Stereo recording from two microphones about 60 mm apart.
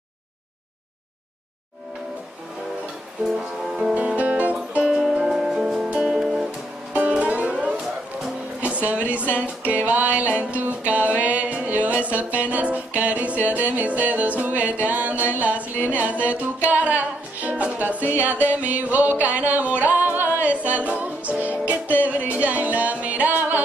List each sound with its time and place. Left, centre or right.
3.3 s music: centre
3.9 s music: right
4.9 s music: centre
6.9 s music: right
8.6 s a sound: right
9.1 s music: right